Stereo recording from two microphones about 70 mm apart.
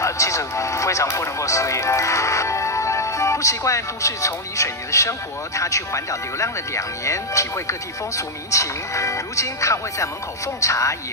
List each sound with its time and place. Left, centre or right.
0.0 s music: left
1.1 s speech: left